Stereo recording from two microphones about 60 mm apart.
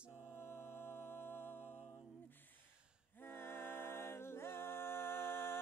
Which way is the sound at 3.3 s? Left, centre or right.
Left.